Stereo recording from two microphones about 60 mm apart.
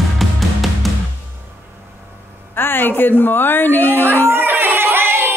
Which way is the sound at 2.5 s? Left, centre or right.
Left.